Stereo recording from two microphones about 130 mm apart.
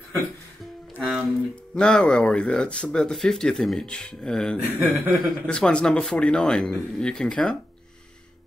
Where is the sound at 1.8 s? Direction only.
5° left (ahead or behind).